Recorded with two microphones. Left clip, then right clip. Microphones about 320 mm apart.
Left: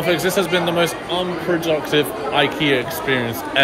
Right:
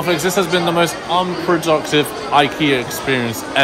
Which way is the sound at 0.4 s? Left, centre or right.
Centre.